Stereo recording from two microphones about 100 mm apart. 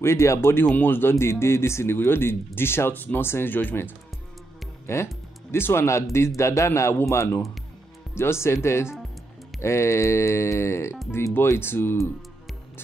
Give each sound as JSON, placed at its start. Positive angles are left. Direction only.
{"t": 0.0, "sound": "speech", "side_deg": 30}